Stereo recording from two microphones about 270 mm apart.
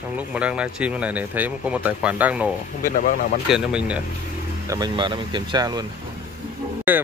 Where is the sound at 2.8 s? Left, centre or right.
Left.